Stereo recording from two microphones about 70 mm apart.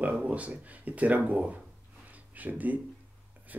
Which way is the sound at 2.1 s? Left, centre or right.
Right.